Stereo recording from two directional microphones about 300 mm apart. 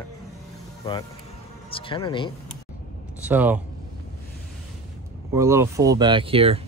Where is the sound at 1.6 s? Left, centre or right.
Centre.